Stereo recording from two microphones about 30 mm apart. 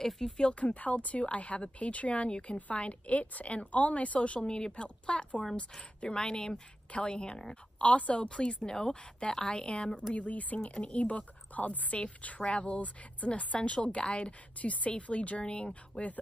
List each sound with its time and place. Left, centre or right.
0.4 s a woman's voice: left
4.4 s a woman's voice: left
4.8 s a woman's voice: left
10.1 s speech: left
10.6 s a woman's voice: left
11.9 s a woman's voice: left
12.4 s a woman's voice: left
14.6 s a woman's voice: left